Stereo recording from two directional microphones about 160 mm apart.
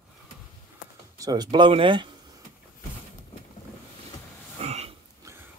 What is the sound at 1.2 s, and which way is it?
Speech, 25° right (ahead or behind).